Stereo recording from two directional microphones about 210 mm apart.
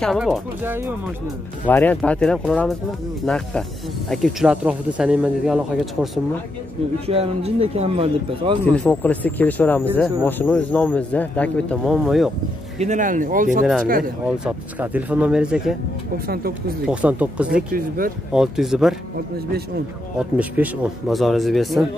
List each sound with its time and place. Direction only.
0.0 s speech: centre (ahead or behind)
1.7 s speech: 10° left (ahead or behind)
7.1 s speech: 30° right (ahead or behind)
8.7 s speech: 5° left (ahead or behind)
12.7 s speech: 35° right (ahead or behind)
14.2 s speech: 5° right (ahead or behind)
16.8 s speech: 5° right (ahead or behind)
17.7 s a man's voice: 45° right (ahead or behind)
18.3 s speech: centre (ahead or behind)
19.3 s a man's voice: 45° right (ahead or behind)
20.2 s speech: 5° right (ahead or behind)